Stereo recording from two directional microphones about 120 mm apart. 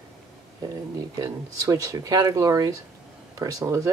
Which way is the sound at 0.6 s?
30° right (ahead or behind).